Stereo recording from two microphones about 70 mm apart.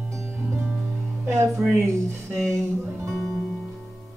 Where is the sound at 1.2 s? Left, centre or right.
Right.